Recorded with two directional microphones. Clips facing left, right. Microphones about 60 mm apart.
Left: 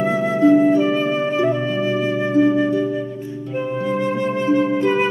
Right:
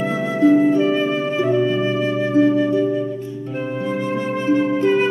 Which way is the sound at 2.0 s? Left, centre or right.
Left.